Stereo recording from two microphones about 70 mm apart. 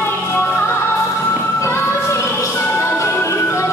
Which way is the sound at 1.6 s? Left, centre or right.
Left.